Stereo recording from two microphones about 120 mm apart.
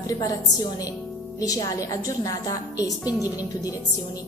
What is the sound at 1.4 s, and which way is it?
A woman's voice, 30° left (ahead or behind).